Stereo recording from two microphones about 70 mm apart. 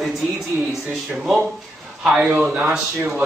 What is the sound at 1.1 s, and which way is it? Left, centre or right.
Speech, centre.